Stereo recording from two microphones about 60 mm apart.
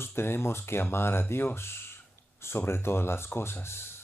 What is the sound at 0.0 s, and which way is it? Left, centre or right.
Speech, left.